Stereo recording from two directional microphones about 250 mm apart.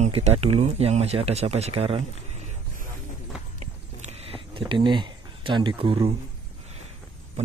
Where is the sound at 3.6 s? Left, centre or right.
Right.